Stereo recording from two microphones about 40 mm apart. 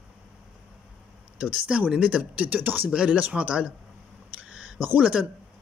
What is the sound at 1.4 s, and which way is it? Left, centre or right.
Speech, right.